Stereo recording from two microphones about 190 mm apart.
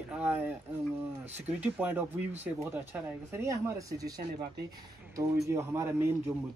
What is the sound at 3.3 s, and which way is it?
Speech, 15° right (ahead or behind).